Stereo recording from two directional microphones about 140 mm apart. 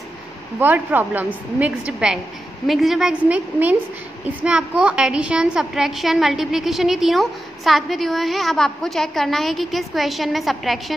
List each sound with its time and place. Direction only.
0.6 s a woman's voice: 10° right (ahead or behind)